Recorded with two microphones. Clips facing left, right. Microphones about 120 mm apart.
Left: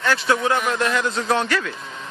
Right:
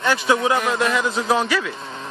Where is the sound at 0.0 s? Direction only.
15° right (ahead or behind).